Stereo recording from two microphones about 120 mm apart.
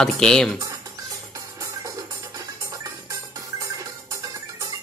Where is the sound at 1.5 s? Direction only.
30° right (ahead or behind).